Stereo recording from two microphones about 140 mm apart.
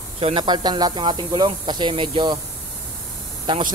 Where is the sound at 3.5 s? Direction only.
35° right (ahead or behind).